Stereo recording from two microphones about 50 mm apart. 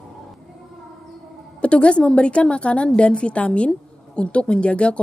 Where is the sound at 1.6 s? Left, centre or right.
Left.